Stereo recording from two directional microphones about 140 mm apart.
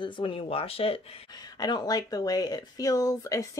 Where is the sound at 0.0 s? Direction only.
35° left (ahead or behind).